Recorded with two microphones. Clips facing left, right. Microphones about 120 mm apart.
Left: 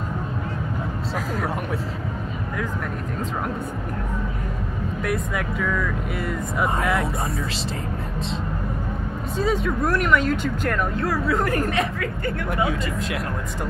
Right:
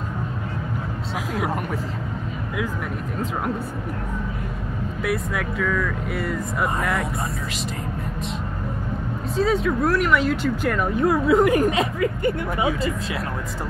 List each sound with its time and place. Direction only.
5.0 s speech: centre (ahead or behind)
9.4 s speech: centre (ahead or behind)
11.0 s a woman's voice: 20° right (ahead or behind)